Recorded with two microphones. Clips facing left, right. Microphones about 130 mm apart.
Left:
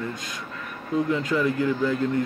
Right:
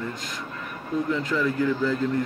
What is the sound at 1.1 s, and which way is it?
Speech, 20° left (ahead or behind).